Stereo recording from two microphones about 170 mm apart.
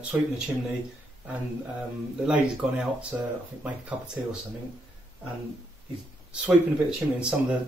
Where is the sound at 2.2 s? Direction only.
5° right (ahead or behind).